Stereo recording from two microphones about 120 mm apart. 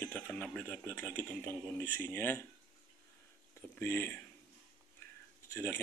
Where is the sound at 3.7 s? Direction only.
15° left (ahead or behind).